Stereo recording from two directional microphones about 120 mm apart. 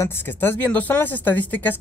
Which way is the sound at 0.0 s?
20° left (ahead or behind).